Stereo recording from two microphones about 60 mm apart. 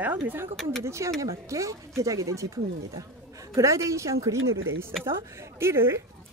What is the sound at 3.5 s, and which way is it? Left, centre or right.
Speech, right.